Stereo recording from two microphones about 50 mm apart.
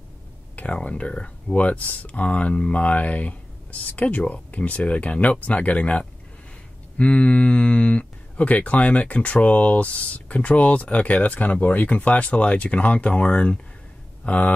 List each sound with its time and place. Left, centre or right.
0.6 s speech: left